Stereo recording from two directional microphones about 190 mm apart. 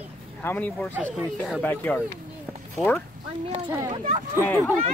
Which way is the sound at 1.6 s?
10° left (ahead or behind).